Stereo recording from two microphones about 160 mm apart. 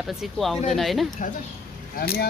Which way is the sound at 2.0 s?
70° left (ahead or behind).